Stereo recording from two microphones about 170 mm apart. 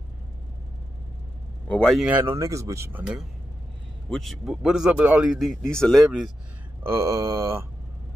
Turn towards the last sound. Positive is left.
turn(degrees=-15)  # may be behind; listen again after turning